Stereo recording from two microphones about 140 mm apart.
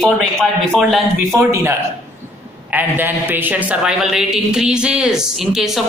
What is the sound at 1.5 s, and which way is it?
A man's voice, 20° right (ahead or behind).